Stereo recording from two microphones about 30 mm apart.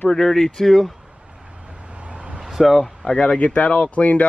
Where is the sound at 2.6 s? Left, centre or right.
Centre.